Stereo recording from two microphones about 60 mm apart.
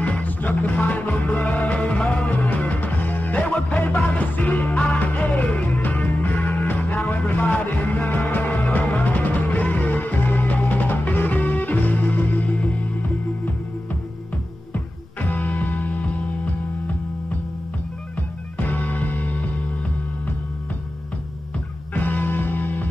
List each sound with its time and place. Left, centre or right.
0.0 s music: left
15.2 s music: left
18.7 s music: left
21.9 s music: left